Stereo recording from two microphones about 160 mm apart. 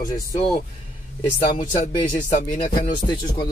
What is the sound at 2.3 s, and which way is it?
Speech, 60° left (ahead or behind).